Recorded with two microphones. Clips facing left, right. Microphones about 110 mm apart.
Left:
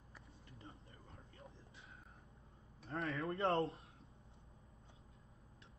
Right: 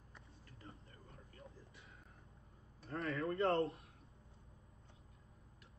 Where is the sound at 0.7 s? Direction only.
30° left (ahead or behind).